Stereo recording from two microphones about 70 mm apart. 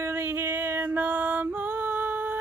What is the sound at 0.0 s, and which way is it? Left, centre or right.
Music, right.